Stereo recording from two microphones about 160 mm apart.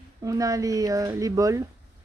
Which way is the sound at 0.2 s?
20° right (ahead or behind).